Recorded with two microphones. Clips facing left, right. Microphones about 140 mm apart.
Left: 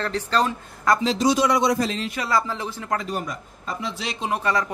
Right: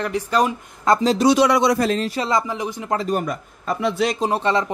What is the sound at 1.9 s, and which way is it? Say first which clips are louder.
Speech: right 7 dB; 40° right (ahead or behind).